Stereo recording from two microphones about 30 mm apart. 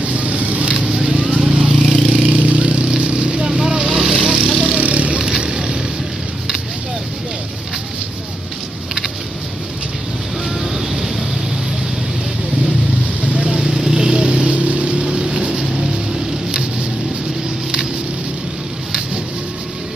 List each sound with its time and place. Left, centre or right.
0.0 s vehicle: right
0.9 s vehicle: right
1.8 s vehicle: centre
2.1 s vehicle: right
3.4 s vehicle: right
4.5 s vehicle: centre
4.7 s vehicle: right
5.2 s vehicle: right
10.6 s vehicle: centre
13.2 s vehicle: right
13.7 s vehicle: centre; by 15.3 s right
15.6 s vehicle: right